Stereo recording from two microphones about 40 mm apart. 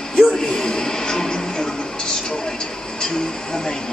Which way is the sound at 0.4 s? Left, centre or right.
Centre.